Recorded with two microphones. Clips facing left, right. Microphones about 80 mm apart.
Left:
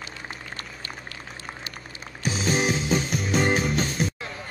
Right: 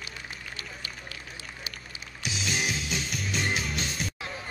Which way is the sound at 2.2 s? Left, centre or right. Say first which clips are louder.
Left 7 dB; left.